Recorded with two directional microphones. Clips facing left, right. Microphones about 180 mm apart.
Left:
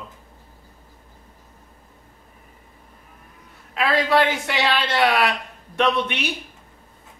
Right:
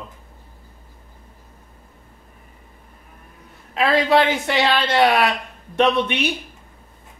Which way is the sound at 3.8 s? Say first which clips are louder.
Right 2 dB; 30° right (ahead or behind).